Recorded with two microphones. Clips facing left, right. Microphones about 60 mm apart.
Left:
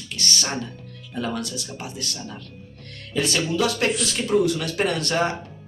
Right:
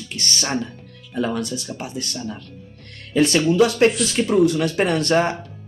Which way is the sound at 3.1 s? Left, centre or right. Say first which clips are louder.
Right 7 dB; right.